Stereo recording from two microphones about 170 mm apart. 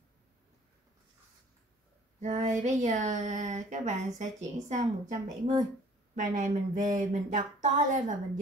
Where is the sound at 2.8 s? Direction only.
45° right (ahead or behind).